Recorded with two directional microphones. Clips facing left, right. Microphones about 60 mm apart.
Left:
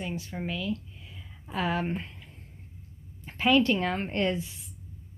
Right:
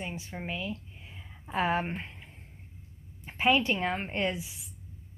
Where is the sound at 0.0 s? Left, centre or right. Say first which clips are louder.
Left 3 dB; right.